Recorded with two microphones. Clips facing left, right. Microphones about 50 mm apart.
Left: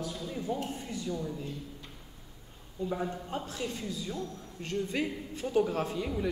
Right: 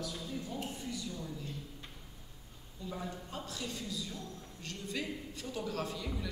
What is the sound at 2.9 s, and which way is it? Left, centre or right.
A man's voice, left.